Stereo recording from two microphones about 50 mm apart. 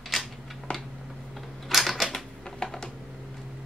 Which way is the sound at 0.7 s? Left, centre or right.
Left.